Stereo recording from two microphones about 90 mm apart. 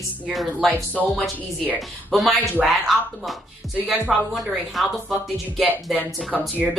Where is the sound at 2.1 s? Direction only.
Centre (ahead or behind).